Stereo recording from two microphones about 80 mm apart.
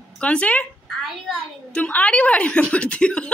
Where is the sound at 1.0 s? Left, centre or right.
Centre.